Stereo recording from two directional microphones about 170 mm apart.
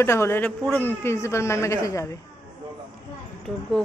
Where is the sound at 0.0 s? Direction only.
15° left (ahead or behind).